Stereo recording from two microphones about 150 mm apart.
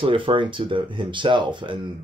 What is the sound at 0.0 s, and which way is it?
Speech, 35° right (ahead or behind).